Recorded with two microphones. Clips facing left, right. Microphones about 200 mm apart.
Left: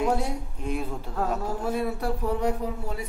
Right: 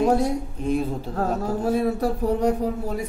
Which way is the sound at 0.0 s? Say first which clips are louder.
Right 6 dB; 40° right (ahead or behind).